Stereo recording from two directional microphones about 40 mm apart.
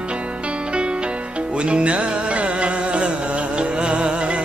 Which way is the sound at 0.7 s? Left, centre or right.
Right.